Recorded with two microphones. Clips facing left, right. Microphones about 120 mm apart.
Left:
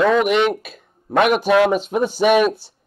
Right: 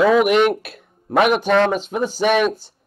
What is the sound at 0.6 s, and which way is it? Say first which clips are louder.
Speech: right 1 dB; 60° right (ahead or behind).